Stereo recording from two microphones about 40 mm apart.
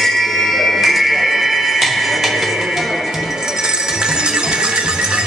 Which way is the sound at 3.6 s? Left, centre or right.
Centre.